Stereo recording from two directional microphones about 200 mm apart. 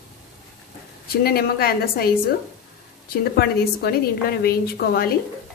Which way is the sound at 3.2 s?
50° left (ahead or behind).